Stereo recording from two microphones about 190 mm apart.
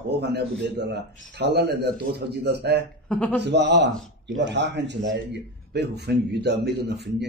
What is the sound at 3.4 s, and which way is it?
A man's voice, 65° right (ahead or behind).